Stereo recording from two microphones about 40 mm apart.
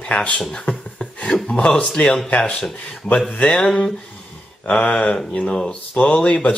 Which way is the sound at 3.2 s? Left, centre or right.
Left.